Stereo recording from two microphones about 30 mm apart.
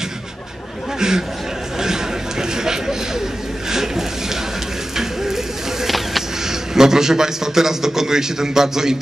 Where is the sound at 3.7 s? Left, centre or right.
Centre.